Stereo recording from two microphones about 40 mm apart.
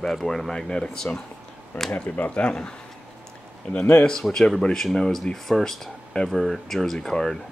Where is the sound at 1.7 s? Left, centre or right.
Left.